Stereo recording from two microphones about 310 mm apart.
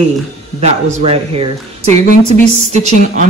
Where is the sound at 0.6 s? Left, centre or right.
Right.